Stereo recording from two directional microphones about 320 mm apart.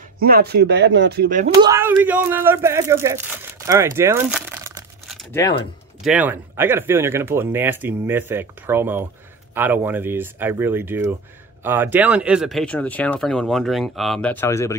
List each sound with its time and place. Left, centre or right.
0.2 s speech: right
1.6 s speech: centre